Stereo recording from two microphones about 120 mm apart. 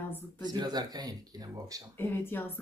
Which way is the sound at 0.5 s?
35° right (ahead or behind).